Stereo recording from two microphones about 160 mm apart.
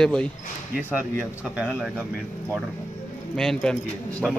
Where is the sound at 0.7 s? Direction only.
10° right (ahead or behind).